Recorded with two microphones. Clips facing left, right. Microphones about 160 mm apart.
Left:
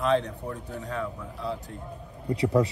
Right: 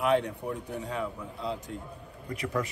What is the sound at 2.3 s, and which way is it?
Speech, 30° left (ahead or behind).